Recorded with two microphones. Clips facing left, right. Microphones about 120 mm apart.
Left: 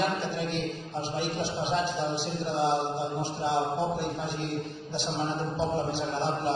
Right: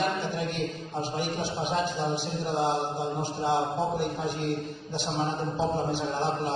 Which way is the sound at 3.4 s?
50° right (ahead or behind).